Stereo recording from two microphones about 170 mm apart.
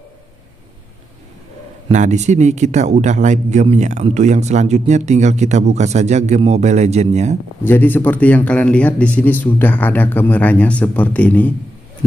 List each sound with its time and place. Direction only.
1.9 s speech: 45° right (ahead or behind)
7.6 s speech: 10° left (ahead or behind)